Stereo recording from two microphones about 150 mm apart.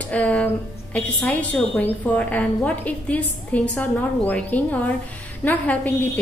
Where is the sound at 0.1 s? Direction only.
10° left (ahead or behind).